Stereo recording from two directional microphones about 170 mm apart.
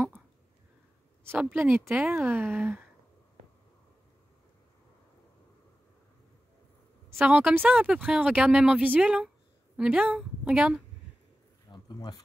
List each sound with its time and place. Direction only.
1.2 s speech: 15° right (ahead or behind)
7.2 s speech: 5° right (ahead or behind)
11.7 s a sound: 25° left (ahead or behind)